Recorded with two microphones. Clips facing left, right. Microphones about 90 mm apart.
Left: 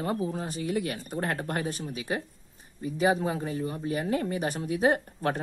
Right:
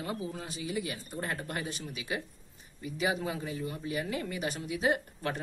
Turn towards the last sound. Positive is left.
turn(degrees=45)  # may be behind; listen again after turning